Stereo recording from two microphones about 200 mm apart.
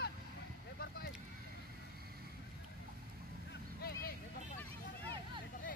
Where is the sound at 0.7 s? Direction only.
50° left (ahead or behind).